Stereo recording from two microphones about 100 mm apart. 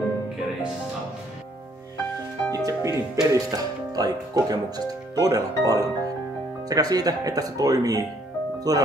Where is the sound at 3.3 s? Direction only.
40° right (ahead or behind).